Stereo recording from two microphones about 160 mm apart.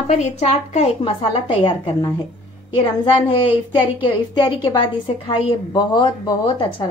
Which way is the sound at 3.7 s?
30° left (ahead or behind).